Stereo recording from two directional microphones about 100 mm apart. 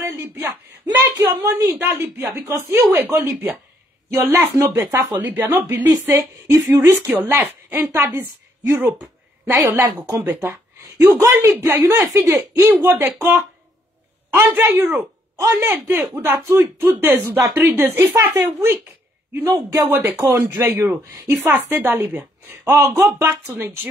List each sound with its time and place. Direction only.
0.0 s a sound: 30° right (ahead or behind)
0.8 s a sound: 45° right (ahead or behind)
1.4 s a woman's voice: 30° right (ahead or behind)
6.4 s speech: 35° right (ahead or behind)
6.8 s a woman's voice: 20° right (ahead or behind)
9.5 s a woman's voice: 30° right (ahead or behind)